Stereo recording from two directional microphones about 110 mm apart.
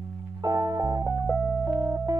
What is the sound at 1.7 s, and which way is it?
Music, 30° right (ahead or behind).